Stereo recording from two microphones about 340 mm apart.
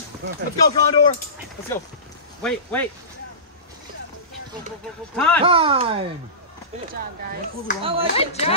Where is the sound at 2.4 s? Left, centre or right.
Centre.